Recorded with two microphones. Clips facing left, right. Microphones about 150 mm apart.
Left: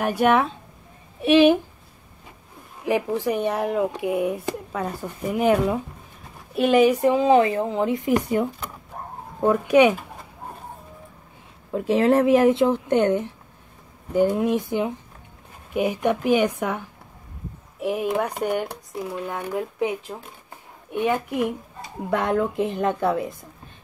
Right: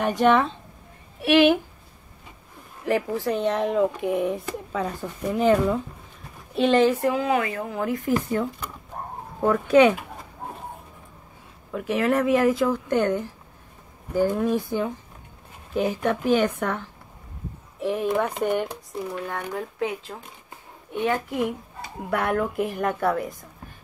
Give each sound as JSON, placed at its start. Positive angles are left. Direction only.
{"t": 0.0, "sound": "speech", "side_deg": 5}
{"t": 1.2, "sound": "speech", "side_deg": 20}
{"t": 2.8, "sound": "speech", "side_deg": 15}
{"t": 11.7, "sound": "speech", "side_deg": 30}